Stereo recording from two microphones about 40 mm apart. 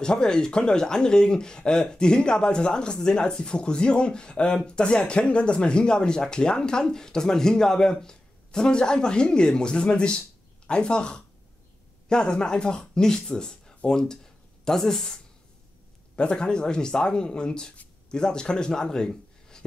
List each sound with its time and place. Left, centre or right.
0.0 s speech: centre
16.2 s speech: left